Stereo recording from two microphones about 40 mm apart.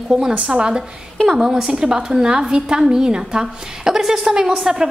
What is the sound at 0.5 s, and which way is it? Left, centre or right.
A woman's voice, right.